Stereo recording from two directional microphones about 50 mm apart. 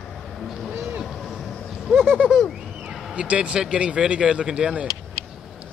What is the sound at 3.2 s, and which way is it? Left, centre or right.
Speech, right.